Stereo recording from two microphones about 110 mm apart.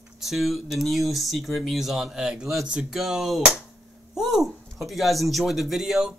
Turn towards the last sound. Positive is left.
turn(degrees=-5)  # may be behind; listen again after turning